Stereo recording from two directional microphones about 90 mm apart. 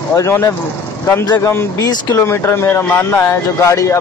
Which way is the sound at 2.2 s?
30° left (ahead or behind).